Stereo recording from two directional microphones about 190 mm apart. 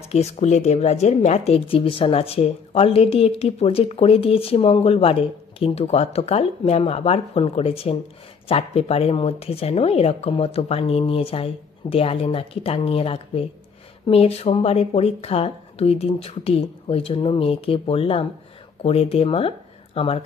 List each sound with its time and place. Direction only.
0.1 s a woman's voice: 35° left (ahead or behind)